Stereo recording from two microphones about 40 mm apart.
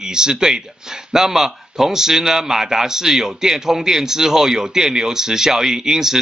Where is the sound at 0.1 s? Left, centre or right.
Centre.